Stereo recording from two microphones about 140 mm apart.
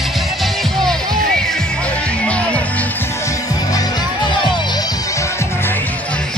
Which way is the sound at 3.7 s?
35° left (ahead or behind).